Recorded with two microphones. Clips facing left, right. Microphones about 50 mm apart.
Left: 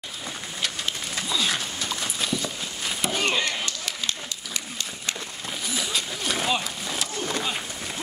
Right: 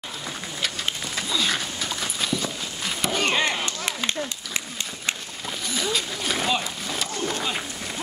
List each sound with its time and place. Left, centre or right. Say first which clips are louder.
1.1 s horse: right 1 dB; centre
3.3 s chop: right 3 dB; right
5.7 s speech: right 3 dB; centre